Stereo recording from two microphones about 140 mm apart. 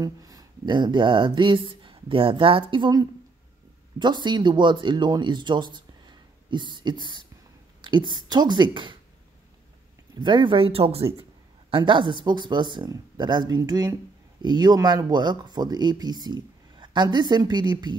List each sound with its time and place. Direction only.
0.0 s speech: 25° right (ahead or behind)
10.1 s speech: 35° right (ahead or behind)